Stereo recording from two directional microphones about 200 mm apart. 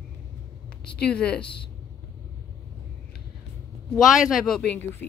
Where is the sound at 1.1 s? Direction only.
5° left (ahead or behind).